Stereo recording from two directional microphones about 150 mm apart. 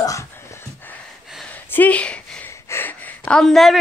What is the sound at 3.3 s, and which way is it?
Speech, 5° left (ahead or behind).